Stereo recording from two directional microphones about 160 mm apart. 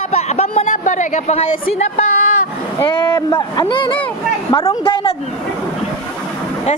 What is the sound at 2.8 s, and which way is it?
Speech, 30° left (ahead or behind).